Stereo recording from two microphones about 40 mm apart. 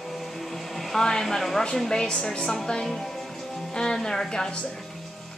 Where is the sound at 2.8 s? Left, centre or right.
Centre.